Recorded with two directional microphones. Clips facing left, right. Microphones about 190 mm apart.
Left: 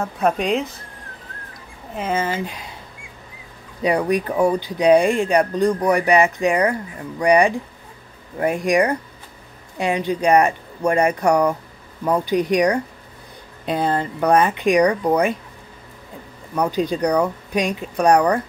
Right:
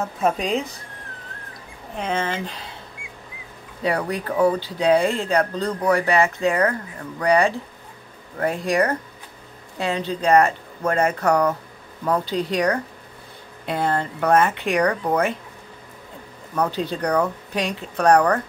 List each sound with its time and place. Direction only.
0.0 s speech: centre (ahead or behind)
2.0 s speech: 5° left (ahead or behind)
3.8 s speech: 15° left (ahead or behind)
16.5 s speech: 15° left (ahead or behind)